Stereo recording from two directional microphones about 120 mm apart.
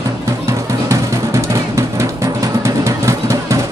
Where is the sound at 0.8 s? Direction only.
25° right (ahead or behind).